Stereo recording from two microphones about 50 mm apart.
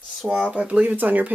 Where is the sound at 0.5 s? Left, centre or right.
Right.